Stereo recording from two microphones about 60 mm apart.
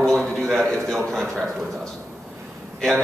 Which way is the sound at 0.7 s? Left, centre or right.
Centre.